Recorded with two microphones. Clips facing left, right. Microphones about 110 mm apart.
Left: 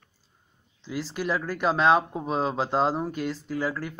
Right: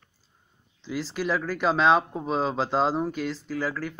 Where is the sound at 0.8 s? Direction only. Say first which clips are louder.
Right 1 dB; 10° left (ahead or behind).